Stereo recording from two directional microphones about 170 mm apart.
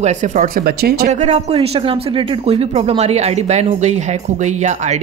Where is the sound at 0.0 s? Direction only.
45° right (ahead or behind); by 1.0 s 65° right (ahead or behind).